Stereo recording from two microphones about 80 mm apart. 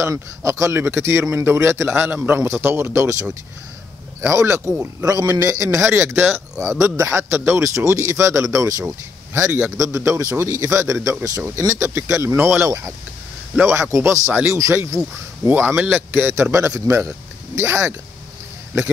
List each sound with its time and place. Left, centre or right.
0.0 s speech: right
4.3 s a man's voice: right
5.9 s speech: right
14.3 s speech: right